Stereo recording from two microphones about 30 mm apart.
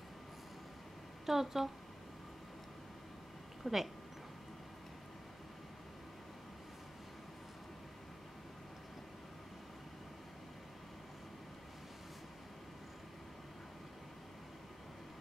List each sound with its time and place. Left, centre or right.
1.2 s a woman's voice: centre
3.6 s speech: centre